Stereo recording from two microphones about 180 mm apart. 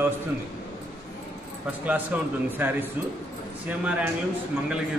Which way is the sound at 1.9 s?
10° right (ahead or behind).